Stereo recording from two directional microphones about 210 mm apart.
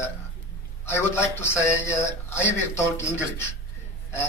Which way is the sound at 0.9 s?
10° left (ahead or behind).